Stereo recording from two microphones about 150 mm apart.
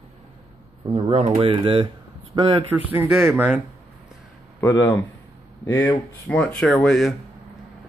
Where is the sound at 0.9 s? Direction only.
35° right (ahead or behind).